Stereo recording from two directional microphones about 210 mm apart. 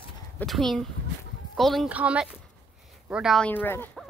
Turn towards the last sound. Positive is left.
turn(degrees=10)  # may be behind; listen again after turning